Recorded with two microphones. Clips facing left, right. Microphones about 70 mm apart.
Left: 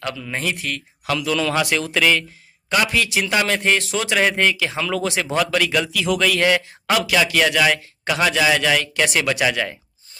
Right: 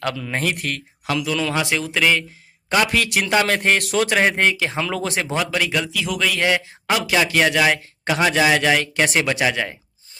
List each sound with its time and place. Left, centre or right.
0.0 s speech: right
1.2 s speech: centre
2.9 s speech: right
4.2 s speech: right
5.3 s speech: centre
7.1 s a man's voice: right